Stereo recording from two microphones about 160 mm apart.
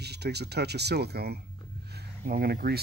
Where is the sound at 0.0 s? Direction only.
90° right.